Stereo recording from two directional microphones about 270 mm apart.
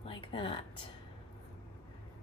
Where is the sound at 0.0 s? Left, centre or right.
Centre.